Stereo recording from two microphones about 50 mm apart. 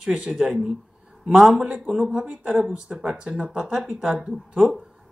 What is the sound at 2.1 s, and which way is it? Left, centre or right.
Speech, right.